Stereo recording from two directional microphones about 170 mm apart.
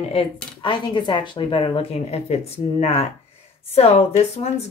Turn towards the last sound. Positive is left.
turn(degrees=40)  # may be behind; listen again after turning